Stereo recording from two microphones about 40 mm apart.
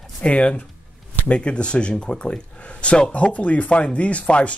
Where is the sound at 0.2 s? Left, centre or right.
Left.